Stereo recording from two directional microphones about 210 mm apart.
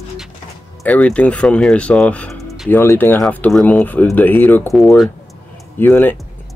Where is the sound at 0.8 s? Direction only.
5° left (ahead or behind).